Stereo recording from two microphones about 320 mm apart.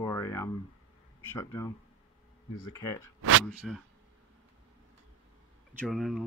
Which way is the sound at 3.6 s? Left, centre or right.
Centre.